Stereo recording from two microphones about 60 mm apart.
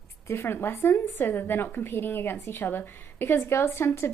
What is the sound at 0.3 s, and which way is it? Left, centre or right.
A woman's voice, left.